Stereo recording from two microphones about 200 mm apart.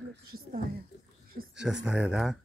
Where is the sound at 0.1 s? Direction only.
90° right.